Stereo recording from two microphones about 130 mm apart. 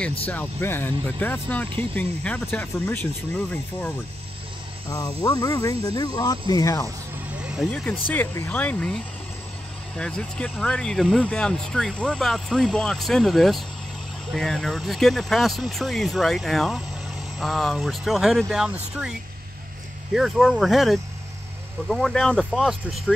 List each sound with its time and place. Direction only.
0.3 s speech: 15° left (ahead or behind)
4.8 s speech: 25° left (ahead or behind)
8.1 s speech: 15° left (ahead or behind); by 19.1 s 5° right (ahead or behind)
20.2 s speech: centre (ahead or behind)